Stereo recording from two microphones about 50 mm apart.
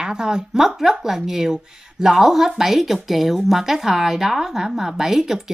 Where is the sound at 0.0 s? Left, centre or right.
Centre.